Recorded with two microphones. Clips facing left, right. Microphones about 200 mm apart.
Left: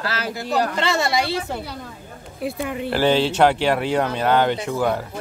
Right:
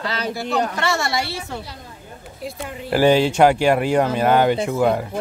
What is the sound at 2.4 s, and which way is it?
Speech, 60° left (ahead or behind).